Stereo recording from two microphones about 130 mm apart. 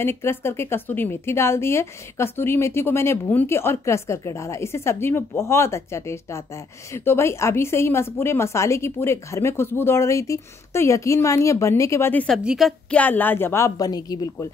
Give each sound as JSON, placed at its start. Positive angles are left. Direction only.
{"t": 0.0, "sound": "speech", "side_deg": 20}
{"t": 12.4, "sound": "a woman's voice", "side_deg": 0}
{"t": 12.9, "sound": "speech", "side_deg": 15}